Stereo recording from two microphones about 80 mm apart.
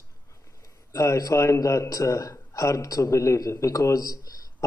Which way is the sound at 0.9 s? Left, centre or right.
Left.